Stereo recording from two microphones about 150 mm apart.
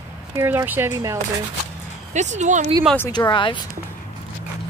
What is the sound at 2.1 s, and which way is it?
Speech, 50° right (ahead or behind).